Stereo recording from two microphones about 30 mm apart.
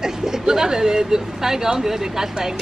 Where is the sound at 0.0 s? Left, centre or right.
Centre.